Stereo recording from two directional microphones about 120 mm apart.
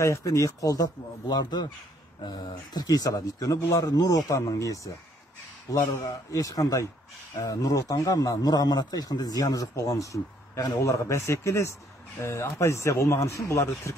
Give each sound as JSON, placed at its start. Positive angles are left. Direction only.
{"t": 0.0, "sound": "a man's voice", "side_deg": 25}